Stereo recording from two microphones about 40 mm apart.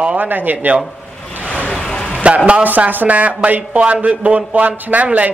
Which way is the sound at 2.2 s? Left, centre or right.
Right.